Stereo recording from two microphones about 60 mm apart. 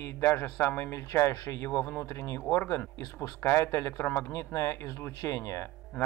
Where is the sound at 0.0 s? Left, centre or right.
Left.